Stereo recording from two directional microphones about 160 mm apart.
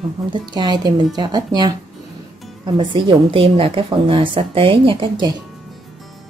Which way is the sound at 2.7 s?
35° right (ahead or behind).